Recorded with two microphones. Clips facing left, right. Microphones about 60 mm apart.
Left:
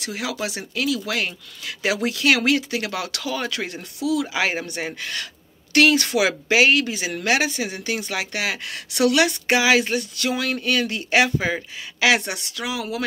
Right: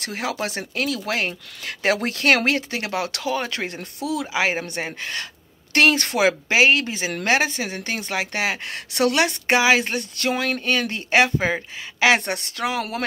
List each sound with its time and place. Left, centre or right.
0.0 s speech: right